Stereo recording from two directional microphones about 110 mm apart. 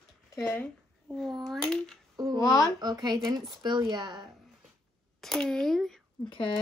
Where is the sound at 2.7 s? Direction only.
40° right (ahead or behind).